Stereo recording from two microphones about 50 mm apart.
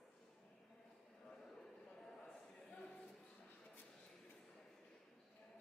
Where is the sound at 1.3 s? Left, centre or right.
Centre.